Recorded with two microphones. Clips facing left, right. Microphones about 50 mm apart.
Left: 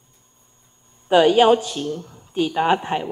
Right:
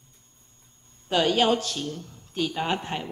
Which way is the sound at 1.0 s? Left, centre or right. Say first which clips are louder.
Left 8 dB; centre.